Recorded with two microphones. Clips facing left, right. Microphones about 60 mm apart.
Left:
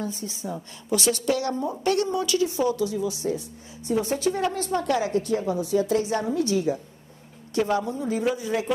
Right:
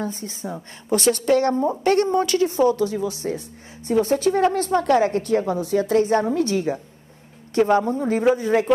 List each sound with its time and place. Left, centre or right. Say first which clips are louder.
0.0 s a woman's voice: right 3 dB; right